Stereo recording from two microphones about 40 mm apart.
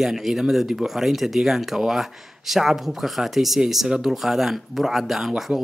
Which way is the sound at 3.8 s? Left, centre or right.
Centre.